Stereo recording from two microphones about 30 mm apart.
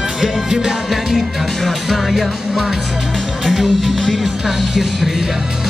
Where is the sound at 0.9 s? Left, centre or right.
Centre.